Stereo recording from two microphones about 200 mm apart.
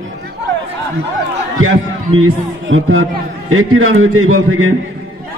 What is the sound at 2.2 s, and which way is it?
A man's voice, 85° right.